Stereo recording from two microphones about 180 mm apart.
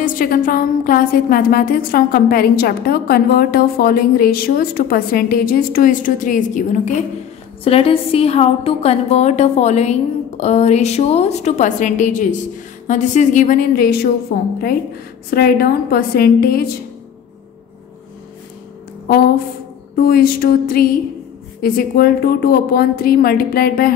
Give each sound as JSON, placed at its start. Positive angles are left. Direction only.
{"t": 0.0, "sound": "a woman's voice", "side_deg": 50}
{"t": 7.6, "sound": "a woman's voice", "side_deg": 30}
{"t": 19.0, "sound": "a woman's voice", "side_deg": 55}